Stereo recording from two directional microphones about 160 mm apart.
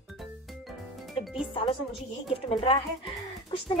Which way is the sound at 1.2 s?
Centre (ahead or behind).